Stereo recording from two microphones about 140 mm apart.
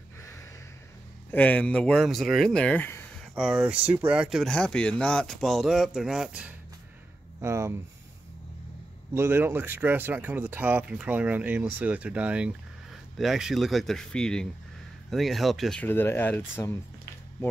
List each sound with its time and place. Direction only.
1.3 s speech: 10° left (ahead or behind)
3.3 s speech: 5° right (ahead or behind)
7.3 s speech: 20° right (ahead or behind)
9.1 s speech: 15° right (ahead or behind); by 15.8 s centre (ahead or behind)
15.8 s speech: 15° left (ahead or behind)